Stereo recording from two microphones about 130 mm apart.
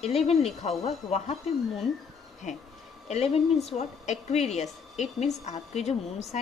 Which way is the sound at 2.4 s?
65° left (ahead or behind).